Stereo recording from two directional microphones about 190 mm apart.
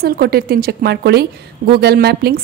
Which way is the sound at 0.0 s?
55° right (ahead or behind).